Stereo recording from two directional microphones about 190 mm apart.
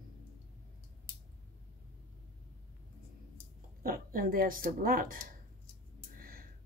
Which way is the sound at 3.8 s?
50° right (ahead or behind).